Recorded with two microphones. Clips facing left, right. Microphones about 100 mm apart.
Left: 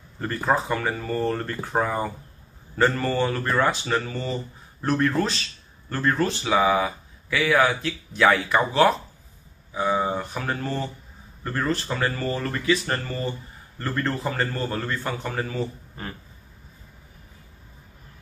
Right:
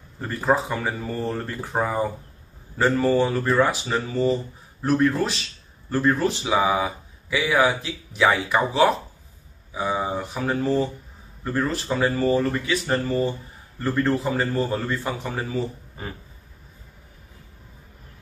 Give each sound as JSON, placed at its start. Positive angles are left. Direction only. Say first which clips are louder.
{"t": 0.2, "sound": "speech", "louder": "right 1 dB", "side_deg": -5}
{"t": 2.8, "sound": "speech", "louder": "right 2 dB", "side_deg": -10}